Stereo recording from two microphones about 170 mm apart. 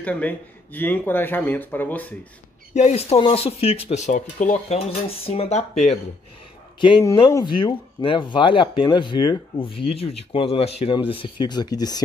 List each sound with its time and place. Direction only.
0.0 s speech: 10° left (ahead or behind)
2.7 s speech: 40° left (ahead or behind)
7.0 s speech: 20° left (ahead or behind)